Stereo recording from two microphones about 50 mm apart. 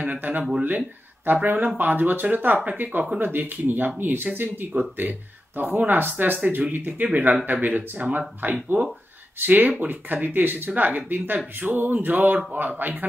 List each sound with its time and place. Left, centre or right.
0.0 s speech: right